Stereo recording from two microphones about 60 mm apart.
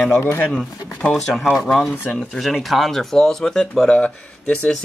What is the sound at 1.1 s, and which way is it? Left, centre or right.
Speech, centre.